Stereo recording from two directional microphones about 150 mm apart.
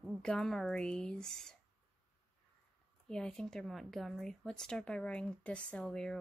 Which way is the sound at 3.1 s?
5° left (ahead or behind).